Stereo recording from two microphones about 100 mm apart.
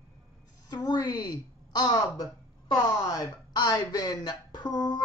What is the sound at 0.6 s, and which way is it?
A woman's voice, 40° left (ahead or behind).